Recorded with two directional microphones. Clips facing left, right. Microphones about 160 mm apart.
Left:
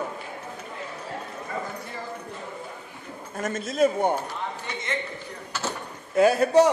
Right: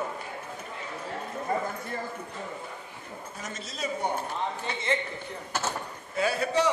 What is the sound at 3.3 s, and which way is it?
Speech, 55° left (ahead or behind).